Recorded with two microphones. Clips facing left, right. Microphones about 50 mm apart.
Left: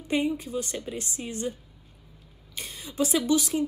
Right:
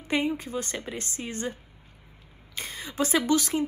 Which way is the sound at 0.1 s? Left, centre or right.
Right.